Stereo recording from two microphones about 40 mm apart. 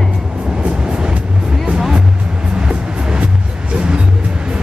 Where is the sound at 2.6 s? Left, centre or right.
Right.